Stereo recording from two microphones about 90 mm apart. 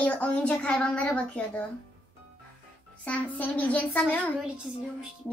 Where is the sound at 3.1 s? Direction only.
20° left (ahead or behind).